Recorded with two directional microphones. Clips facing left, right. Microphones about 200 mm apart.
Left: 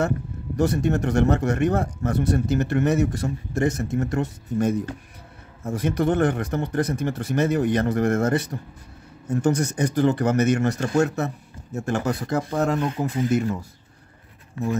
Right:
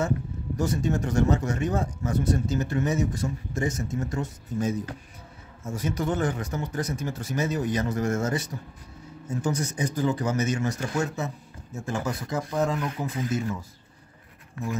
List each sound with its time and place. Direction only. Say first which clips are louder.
0.6 s speech: left 5 dB; 65° left (ahead or behind)